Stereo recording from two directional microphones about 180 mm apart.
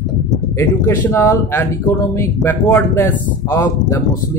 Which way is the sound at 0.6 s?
15° left (ahead or behind).